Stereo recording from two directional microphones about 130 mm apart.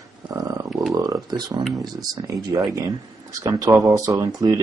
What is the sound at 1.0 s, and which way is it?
Speech, 30° right (ahead or behind).